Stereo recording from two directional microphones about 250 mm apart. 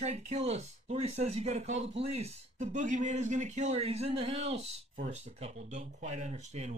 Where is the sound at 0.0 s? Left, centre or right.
Right.